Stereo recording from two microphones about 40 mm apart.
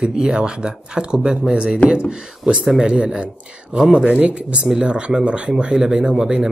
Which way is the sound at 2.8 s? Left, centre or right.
Right.